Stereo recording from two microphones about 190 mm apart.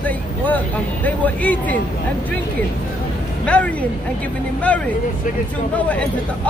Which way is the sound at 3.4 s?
5° left (ahead or behind).